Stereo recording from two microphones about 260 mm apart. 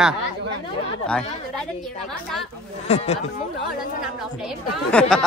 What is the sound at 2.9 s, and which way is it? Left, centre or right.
Speech, left.